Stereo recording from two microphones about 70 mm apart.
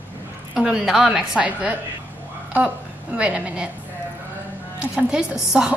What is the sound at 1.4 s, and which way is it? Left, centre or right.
Speech, centre.